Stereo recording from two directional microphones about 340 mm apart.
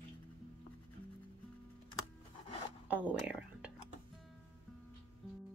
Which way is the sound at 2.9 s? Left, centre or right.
Centre.